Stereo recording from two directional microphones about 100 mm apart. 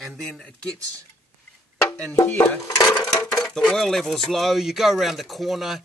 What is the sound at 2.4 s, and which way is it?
Speech, 30° left (ahead or behind).